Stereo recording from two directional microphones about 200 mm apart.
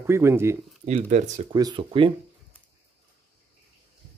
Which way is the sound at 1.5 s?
20° right (ahead or behind).